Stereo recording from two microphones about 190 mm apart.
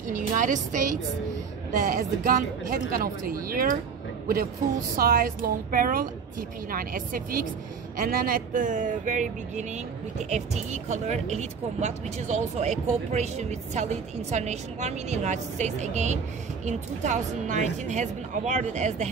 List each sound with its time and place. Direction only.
0.4 s speech: 40° right (ahead or behind)
4.9 s speech: 50° right (ahead or behind)